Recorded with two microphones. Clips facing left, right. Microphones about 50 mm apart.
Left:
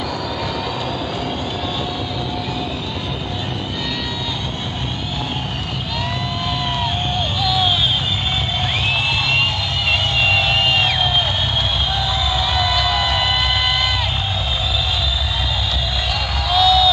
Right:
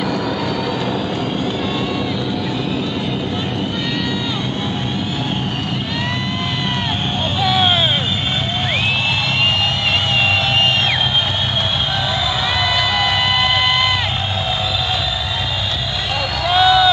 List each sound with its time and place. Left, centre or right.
7.4 s vehicle: right
12.7 s a sound: right
16.5 s crowd: right